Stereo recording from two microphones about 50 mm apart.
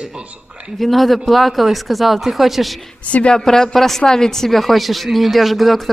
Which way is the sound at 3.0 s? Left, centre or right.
Left.